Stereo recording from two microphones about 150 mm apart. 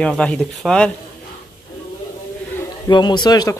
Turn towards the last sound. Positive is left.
turn(degrees=25)  # may be behind; listen again after turning